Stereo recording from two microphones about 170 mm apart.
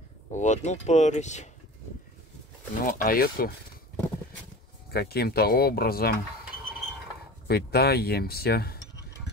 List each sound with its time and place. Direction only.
0.3 s speech: 45° left (ahead or behind)
2.8 s speech: 55° left (ahead or behind)
4.9 s speech: 65° left (ahead or behind)
7.4 s speech: 70° left (ahead or behind)